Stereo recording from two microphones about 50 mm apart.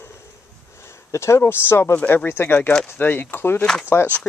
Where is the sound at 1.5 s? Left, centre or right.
Left.